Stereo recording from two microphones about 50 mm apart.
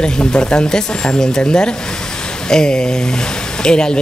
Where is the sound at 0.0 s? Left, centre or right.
Centre.